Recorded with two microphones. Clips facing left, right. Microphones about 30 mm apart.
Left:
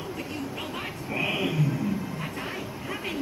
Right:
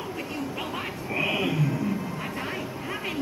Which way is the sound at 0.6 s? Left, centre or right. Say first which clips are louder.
Right 2 dB; centre.